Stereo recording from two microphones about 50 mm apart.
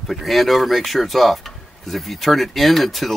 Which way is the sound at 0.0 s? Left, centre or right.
Centre.